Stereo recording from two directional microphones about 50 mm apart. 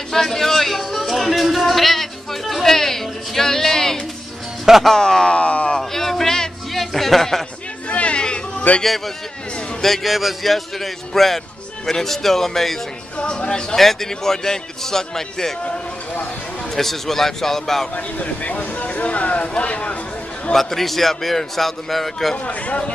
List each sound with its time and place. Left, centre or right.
0.1 s music: centre
4.8 s a man's voice: centre
5.8 s a sound: centre
7.9 s a sound: left
8.8 s a man's voice: centre
13.2 s a man's voice: centre
13.7 s a man's voice: centre
15.6 s a sound: left
16.7 s a man's voice: centre
17.9 s speech: left
20.5 s a man's voice: centre
22.5 s speech: left